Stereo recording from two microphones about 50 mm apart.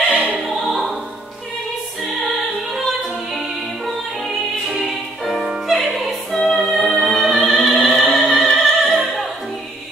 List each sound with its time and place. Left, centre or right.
0.1 s opera: right
0.5 s music: centre
4.6 s music: centre
5.5 s opera: centre
6.4 s music: centre